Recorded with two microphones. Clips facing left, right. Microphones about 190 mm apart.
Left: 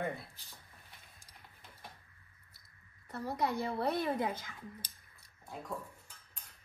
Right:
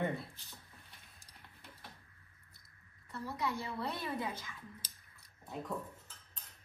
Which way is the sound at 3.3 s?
50° left (ahead or behind).